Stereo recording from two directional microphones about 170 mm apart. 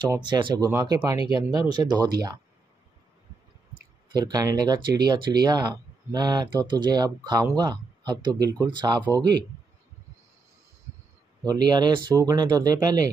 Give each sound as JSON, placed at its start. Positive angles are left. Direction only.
{"t": 0.0, "sound": "speech", "side_deg": -25}
{"t": 0.7, "sound": "speech", "side_deg": -15}
{"t": 4.1, "sound": "speech", "side_deg": -25}
{"t": 11.4, "sound": "speech", "side_deg": -25}